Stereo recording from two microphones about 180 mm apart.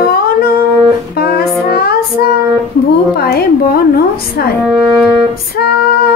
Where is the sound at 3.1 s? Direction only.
60° left (ahead or behind).